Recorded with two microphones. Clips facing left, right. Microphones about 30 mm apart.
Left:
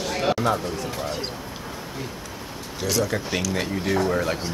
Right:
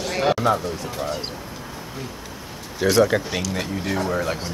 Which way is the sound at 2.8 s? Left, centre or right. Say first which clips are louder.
Right 7 dB; right.